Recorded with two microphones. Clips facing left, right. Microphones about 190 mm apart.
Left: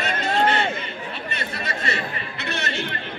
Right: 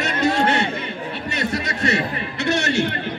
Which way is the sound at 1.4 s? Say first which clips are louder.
Right 8 dB; 75° right (ahead or behind).